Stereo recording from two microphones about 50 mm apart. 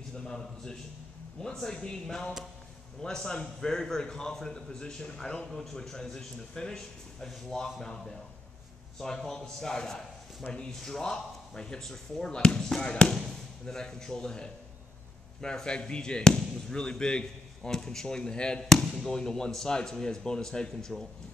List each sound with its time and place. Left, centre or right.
0.2 s a man's voice: centre
5.5 s a man's voice: centre
13.1 s a man's voice: centre
18.6 s a man's voice: centre